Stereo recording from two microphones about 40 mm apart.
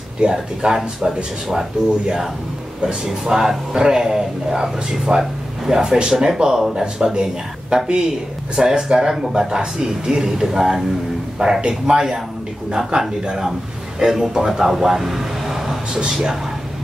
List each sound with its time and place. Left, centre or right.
0.2 s a man's voice: centre
9.6 s a man's voice: right